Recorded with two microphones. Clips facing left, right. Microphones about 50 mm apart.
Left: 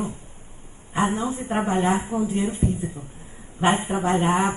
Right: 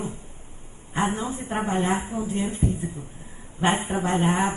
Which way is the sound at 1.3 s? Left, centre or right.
Left.